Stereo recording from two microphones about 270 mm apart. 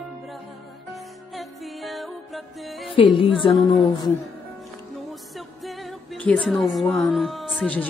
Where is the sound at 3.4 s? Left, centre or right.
Centre.